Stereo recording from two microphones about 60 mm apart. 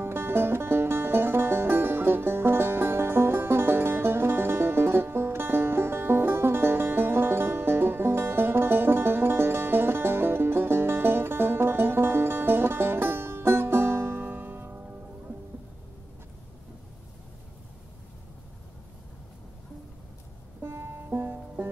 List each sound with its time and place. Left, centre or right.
0.0 s music: right
14.2 s music: right
20.6 s music: right